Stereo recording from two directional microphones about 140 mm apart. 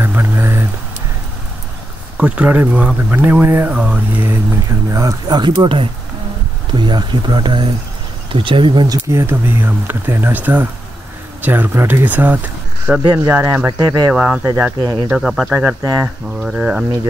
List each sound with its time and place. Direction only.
0.0 s a sound: 20° right (ahead or behind)
2.1 s speech: 10° right (ahead or behind)
13.0 s speech: 30° right (ahead or behind)
13.3 s speech: 15° right (ahead or behind)
14.1 s speech: 5° right (ahead or behind)
14.8 s speech: 35° right (ahead or behind)
15.1 s speech: 5° right (ahead or behind)
15.5 s speech: 20° right (ahead or behind)
16.4 s speech: 5° right (ahead or behind)